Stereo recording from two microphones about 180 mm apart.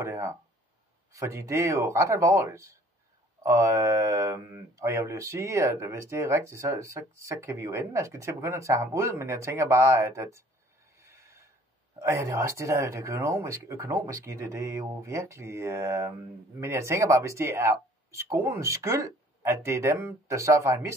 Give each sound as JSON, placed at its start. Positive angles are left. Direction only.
{"t": 0.0, "sound": "speech", "side_deg": -15}
{"t": 11.0, "sound": "a sound", "side_deg": -15}
{"t": 12.0, "sound": "speech", "side_deg": -15}